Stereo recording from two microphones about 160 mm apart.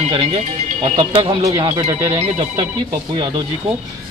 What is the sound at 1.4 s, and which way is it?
Speech, 20° right (ahead or behind).